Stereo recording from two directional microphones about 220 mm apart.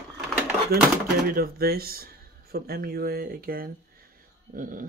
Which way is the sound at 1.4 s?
45° right (ahead or behind).